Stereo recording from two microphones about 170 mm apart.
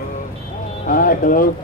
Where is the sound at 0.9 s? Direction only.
55° left (ahead or behind).